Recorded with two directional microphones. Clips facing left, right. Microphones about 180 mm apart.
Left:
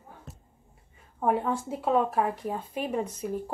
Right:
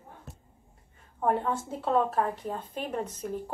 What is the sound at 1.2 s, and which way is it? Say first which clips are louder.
A woman's voice: left 1 dB; 10° left (ahead or behind).